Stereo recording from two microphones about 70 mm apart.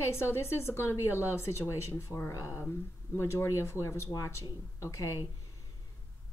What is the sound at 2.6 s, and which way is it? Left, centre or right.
Speech, left.